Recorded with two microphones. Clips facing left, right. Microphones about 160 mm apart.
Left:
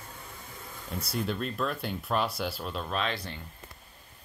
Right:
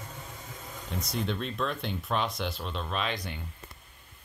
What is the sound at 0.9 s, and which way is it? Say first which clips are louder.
Speech: even; 5° left (ahead or behind).